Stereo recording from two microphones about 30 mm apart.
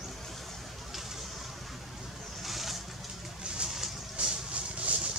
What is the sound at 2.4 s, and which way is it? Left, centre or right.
Boat, centre.